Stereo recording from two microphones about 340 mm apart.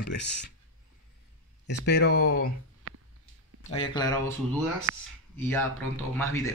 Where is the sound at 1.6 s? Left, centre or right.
Left.